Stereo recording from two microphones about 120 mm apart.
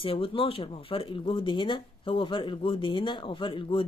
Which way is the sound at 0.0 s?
50° left (ahead or behind).